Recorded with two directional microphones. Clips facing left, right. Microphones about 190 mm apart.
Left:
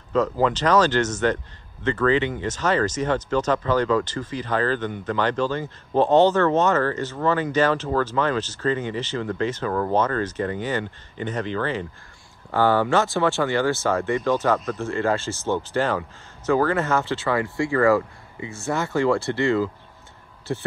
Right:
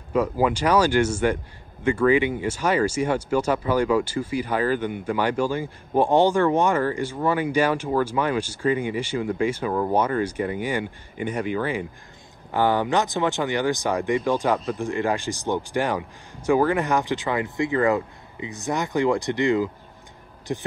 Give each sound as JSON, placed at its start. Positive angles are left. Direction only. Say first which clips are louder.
{"t": 0.1, "sound": "a man's voice", "louder": "left 1 dB", "side_deg": -10}